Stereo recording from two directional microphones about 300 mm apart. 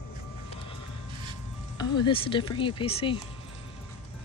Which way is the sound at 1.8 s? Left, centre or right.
Centre.